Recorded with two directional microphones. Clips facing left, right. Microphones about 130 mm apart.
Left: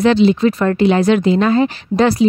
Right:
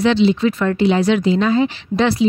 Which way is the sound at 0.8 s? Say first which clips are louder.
Left 2 dB; 55° left (ahead or behind).